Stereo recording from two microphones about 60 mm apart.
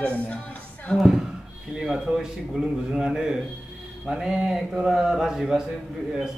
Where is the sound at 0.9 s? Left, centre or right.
Centre.